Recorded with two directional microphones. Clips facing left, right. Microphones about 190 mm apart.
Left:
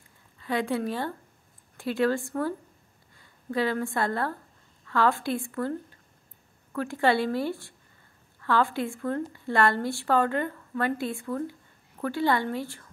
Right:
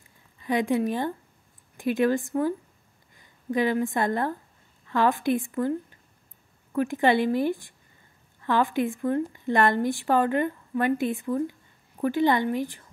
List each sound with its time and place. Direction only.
0.4 s a woman's voice: 15° right (ahead or behind)